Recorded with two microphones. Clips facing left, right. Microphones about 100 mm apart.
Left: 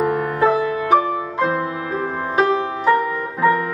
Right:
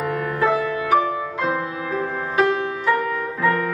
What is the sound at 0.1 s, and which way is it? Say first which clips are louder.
Music: left 3 dB; 20° left (ahead or behind).